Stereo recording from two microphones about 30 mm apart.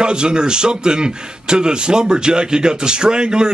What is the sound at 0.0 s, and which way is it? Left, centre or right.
Speech, right.